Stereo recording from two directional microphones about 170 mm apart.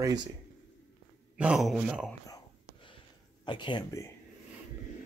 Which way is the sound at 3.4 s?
25° left (ahead or behind).